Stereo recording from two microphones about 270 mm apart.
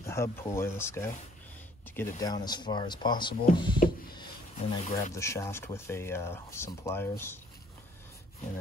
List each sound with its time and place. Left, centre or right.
0.0 s speech: centre
4.1 s a sound: centre
5.1 s speech: centre